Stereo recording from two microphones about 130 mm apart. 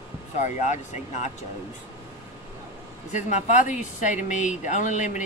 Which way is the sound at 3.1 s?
70° left (ahead or behind).